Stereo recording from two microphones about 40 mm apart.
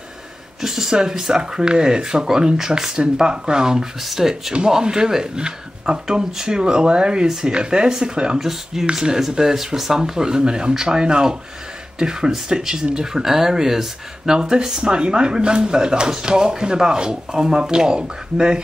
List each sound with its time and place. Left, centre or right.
0.6 s speech: centre
8.4 s speech: centre